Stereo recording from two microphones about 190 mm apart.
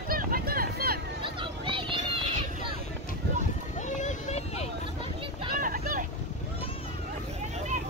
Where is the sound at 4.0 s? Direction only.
40° left (ahead or behind).